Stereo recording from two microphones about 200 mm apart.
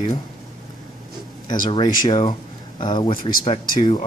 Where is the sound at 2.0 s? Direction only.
20° left (ahead or behind).